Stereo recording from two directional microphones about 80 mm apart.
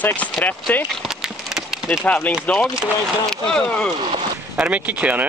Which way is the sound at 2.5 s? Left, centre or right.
Centre.